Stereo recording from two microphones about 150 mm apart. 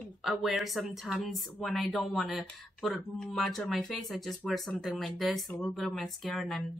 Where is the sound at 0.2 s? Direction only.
Centre (ahead or behind).